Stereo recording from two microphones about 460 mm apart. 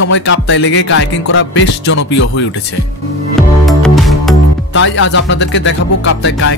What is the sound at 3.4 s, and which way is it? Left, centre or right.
Music, centre.